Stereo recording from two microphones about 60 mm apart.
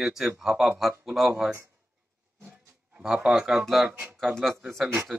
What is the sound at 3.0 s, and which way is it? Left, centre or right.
Speech, centre.